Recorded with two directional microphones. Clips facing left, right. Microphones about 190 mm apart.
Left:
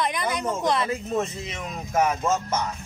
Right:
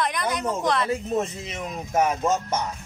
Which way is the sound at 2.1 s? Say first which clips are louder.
Right 1 dB; 15° right (ahead or behind).